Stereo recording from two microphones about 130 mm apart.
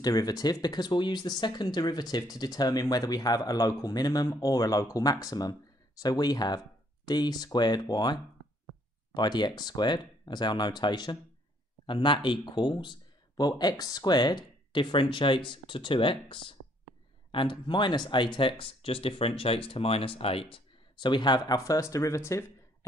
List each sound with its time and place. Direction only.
0.0 s speech: 30° left (ahead or behind)
21.5 s speech: 25° left (ahead or behind)